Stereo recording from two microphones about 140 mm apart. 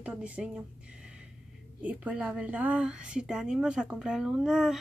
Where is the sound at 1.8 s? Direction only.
10° right (ahead or behind).